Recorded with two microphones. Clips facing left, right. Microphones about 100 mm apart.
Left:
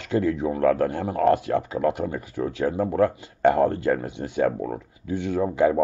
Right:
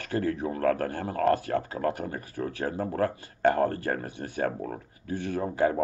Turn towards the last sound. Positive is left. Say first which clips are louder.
# left 5 dB
turn(degrees=20)  # may be behind; listen again after turning